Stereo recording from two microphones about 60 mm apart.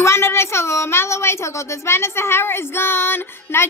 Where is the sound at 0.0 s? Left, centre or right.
Left.